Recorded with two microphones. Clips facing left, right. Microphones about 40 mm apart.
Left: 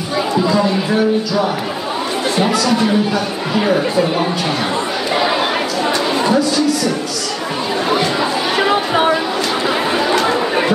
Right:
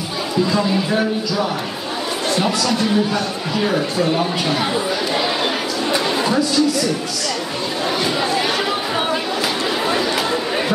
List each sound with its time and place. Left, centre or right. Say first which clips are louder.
3.5 s speech: left 4 dB; centre
5.1 s chatter: left 7 dB; centre
6.1 s speech: left 3 dB; centre
7.9 s chatter: left 4 dB; centre